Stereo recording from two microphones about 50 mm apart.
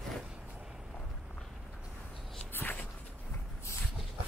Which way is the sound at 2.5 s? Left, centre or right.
Left.